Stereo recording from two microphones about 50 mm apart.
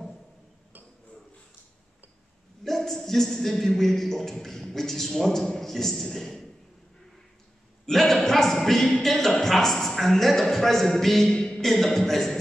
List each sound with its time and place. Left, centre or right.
2.6 s a man's voice: centre
7.8 s a man's voice: centre